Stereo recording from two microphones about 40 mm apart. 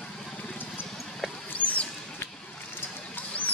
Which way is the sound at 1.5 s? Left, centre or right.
Left.